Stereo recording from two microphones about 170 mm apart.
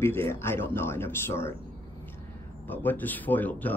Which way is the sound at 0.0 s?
15° left (ahead or behind).